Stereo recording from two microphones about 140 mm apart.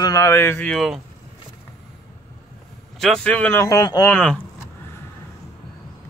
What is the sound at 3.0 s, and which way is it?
Speech, 5° left (ahead or behind).